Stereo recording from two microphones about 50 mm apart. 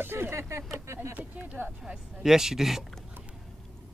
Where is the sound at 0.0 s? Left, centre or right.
Right.